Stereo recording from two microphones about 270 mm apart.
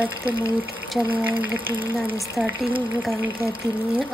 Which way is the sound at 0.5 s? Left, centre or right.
Centre.